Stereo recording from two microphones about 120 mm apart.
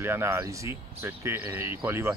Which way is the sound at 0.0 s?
20° right (ahead or behind).